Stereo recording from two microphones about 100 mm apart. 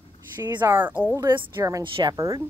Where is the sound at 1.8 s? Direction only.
50° right (ahead or behind).